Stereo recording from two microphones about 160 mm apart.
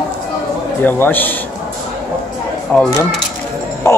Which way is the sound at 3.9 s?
15° left (ahead or behind).